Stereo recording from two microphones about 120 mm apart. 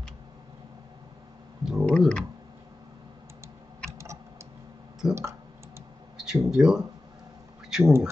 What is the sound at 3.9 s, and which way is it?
Typing, 25° right (ahead or behind).